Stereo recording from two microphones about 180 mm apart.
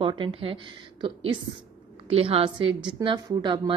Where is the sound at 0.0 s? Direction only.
30° right (ahead or behind).